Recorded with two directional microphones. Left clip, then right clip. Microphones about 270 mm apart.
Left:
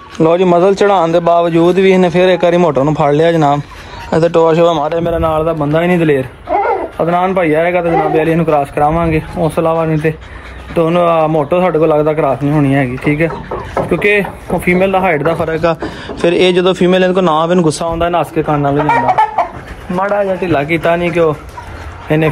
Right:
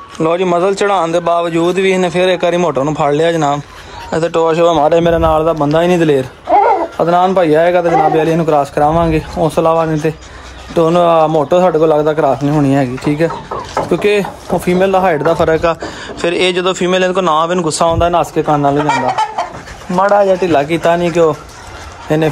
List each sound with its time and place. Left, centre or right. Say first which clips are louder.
0.2 s speech: left 3 dB; centre
4.9 s a man's voice: right 4 dB; right
5.2 s speech: right 2 dB; right
15.6 s speech: left 1 dB; centre
17.7 s speech: right 3 dB; right
18.9 s speech: left 3 dB; centre
20.0 s speech: right 4 dB; right